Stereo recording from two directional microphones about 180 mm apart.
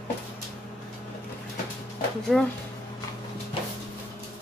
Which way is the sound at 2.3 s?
5° left (ahead or behind).